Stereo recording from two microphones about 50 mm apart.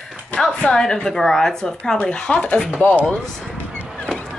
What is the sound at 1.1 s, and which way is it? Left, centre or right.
Speech, centre.